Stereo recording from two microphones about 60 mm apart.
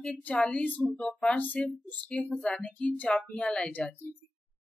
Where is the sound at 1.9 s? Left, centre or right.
Left.